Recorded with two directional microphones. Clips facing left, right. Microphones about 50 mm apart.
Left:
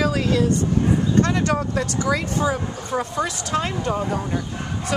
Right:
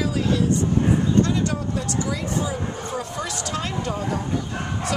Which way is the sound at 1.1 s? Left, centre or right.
Left.